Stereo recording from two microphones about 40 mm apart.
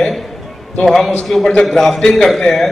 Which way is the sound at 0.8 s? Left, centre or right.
Centre.